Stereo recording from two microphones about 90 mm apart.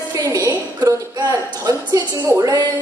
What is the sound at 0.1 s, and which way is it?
A woman's voice, 40° right (ahead or behind).